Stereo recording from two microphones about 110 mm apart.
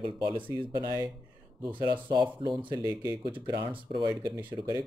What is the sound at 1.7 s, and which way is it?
Speech, 50° right (ahead or behind).